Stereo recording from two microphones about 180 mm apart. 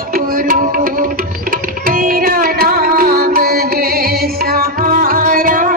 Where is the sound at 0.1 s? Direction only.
50° right (ahead or behind).